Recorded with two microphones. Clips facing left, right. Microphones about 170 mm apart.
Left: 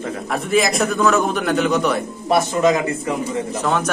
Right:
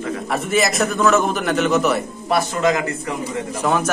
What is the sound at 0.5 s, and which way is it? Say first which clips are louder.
A man's voice: left 2 dB; centre (ahead or behind).